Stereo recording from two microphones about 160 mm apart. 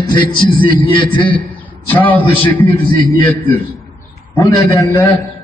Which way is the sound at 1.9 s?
10° left (ahead or behind).